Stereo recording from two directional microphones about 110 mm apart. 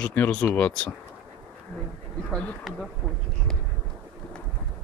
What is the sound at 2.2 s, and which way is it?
Speech, 5° left (ahead or behind).